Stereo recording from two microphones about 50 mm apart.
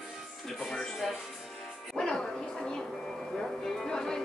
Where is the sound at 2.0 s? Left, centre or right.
Centre.